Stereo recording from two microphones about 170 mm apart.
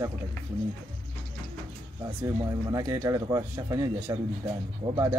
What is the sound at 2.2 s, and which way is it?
Speech, 20° right (ahead or behind).